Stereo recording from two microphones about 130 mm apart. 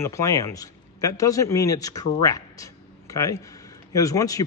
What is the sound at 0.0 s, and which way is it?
A man's voice, 20° left (ahead or behind).